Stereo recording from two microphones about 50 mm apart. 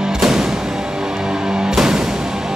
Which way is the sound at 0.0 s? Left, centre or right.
Centre.